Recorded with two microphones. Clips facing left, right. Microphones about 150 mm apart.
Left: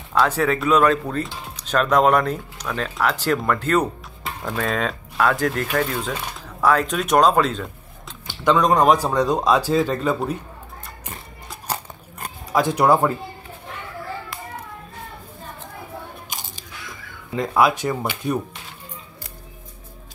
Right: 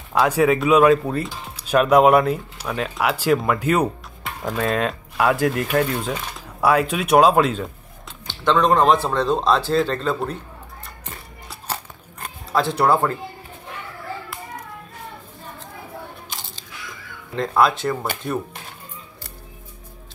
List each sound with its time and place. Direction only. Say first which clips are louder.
0.1 s speech: right 2 dB; 10° right (ahead or behind)
8.3 s speech: even; 10° left (ahead or behind)
12.5 s speech: left 1 dB; 15° left (ahead or behind)
16.3 s biting: left 2 dB; 15° left (ahead or behind)
17.4 s speech: even; 10° left (ahead or behind)